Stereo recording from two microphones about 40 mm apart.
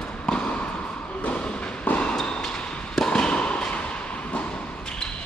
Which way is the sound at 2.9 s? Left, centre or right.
Centre.